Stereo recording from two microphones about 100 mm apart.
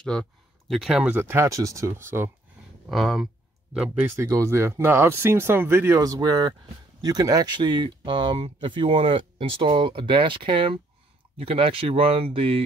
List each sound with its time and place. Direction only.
0.0 s speech: 5° left (ahead or behind)
1.0 s speech: 20° right (ahead or behind)
2.9 s speech: centre (ahead or behind)
3.7 s speech: 10° right (ahead or behind)
4.2 s speech: 30° right (ahead or behind)
5.9 s speech: 40° right (ahead or behind); by 10.8 s 60° right (ahead or behind)
11.3 s speech: 70° right (ahead or behind)